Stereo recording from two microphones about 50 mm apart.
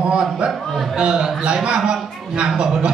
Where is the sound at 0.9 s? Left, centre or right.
Right.